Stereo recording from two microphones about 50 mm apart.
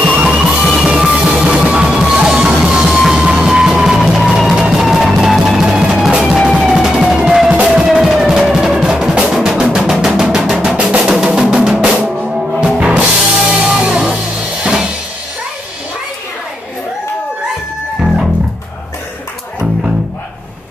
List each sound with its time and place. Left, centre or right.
0.2 s music: centre
2.9 s music: centre
4.6 s music: centre